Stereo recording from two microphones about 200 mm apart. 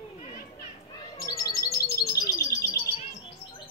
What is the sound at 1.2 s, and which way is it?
Chirp, 20° left (ahead or behind).